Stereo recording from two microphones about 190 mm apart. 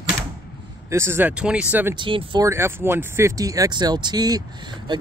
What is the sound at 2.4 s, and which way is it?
Speech, 15° right (ahead or behind).